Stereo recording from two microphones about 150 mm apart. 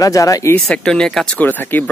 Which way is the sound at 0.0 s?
20° left (ahead or behind).